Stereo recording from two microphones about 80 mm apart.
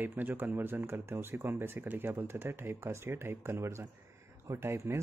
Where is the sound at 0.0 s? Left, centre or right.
Right.